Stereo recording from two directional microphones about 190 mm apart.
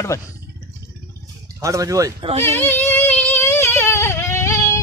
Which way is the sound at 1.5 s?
15° right (ahead or behind).